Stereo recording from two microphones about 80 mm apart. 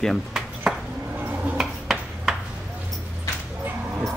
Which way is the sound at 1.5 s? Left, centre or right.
Centre.